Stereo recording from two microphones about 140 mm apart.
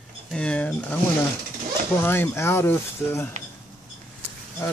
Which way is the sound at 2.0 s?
15° left (ahead or behind).